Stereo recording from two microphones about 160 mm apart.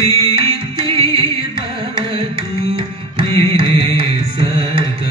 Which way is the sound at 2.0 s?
35° right (ahead or behind).